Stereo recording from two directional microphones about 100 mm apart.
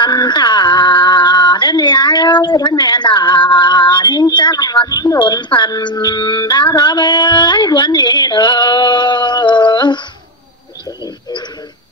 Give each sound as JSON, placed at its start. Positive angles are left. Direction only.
{"t": 0.0, "sound": "speech", "side_deg": 45}
{"t": 5.2, "sound": "speech", "side_deg": 50}